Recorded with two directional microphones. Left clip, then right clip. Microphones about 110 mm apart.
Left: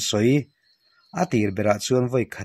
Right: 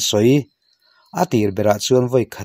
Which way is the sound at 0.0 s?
30° right (ahead or behind).